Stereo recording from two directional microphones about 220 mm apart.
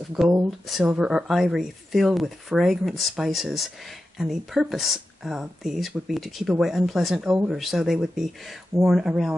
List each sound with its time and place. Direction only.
0.2 s speech: 10° right (ahead or behind)